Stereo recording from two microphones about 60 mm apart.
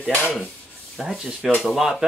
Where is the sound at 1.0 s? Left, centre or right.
Centre.